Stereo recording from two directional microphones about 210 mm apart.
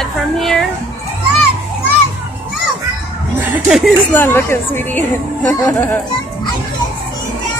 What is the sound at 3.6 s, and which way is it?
Speech, centre (ahead or behind).